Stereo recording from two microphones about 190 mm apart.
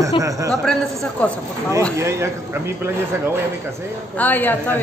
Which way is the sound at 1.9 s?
15° right (ahead or behind).